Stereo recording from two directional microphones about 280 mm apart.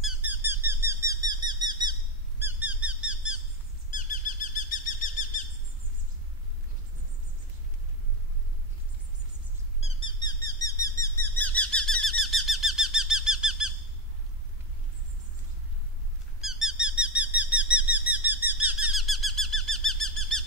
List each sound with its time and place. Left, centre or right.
0.0 s squeak: centre
1.5 s bird: centre
3.9 s bird: left
9.8 s squeak: centre
16.3 s squeak: centre
18.8 s bird: centre